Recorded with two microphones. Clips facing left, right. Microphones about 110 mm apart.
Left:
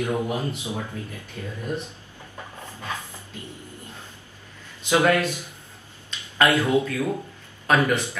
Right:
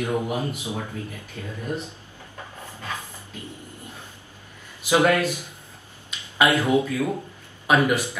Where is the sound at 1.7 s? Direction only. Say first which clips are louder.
Even; 15° right (ahead or behind).